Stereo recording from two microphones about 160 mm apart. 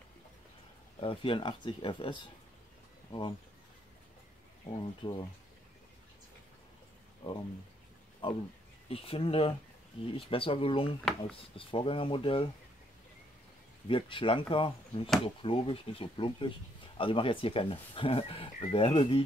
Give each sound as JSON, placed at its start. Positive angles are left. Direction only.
{"t": 1.0, "sound": "speech", "side_deg": 30}
{"t": 4.6, "sound": "speech", "side_deg": 30}
{"t": 8.2, "sound": "speech", "side_deg": 30}
{"t": 13.8, "sound": "speech", "side_deg": 35}